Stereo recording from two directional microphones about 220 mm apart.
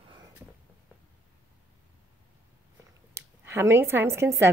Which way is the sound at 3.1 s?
10° right (ahead or behind).